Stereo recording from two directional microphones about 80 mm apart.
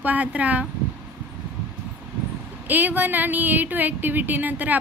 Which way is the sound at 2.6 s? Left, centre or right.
Right.